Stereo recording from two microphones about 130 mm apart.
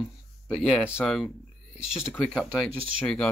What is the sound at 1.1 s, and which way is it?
Speech, 5° left (ahead or behind).